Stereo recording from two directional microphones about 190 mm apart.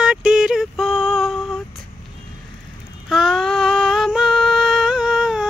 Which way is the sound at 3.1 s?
Centre (ahead or behind).